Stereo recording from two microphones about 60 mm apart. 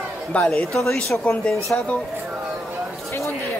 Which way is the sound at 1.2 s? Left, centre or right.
Centre.